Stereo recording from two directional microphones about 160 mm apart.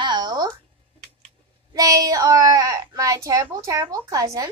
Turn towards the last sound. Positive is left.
turn(degrees=-20)  # may be behind; listen again after turning